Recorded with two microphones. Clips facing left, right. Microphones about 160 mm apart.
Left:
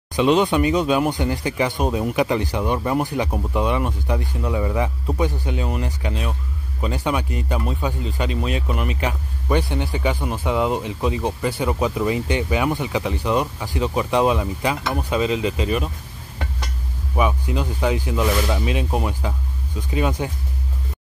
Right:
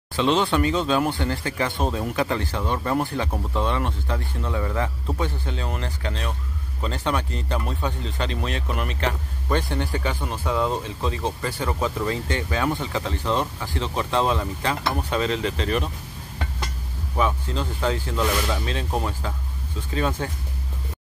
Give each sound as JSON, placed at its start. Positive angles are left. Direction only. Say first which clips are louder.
{"t": 0.1, "sound": "speech", "louder": "left 4 dB", "side_deg": 15}
{"t": 17.2, "sound": "speech", "louder": "left 3 dB", "side_deg": 10}